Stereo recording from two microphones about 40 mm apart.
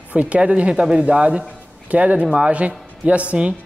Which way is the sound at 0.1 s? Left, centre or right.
Right.